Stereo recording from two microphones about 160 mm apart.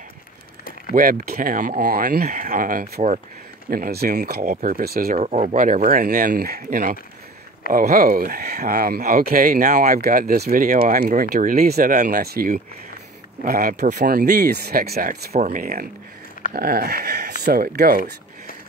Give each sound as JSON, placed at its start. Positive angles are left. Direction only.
{"t": 0.9, "sound": "speech", "side_deg": -60}
{"t": 3.7, "sound": "speech", "side_deg": -70}
{"t": 5.1, "sound": "speech", "side_deg": -50}
{"t": 5.6, "sound": "speech", "side_deg": -60}